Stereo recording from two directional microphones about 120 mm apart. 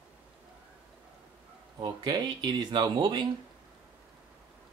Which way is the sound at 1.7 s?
40° right (ahead or behind).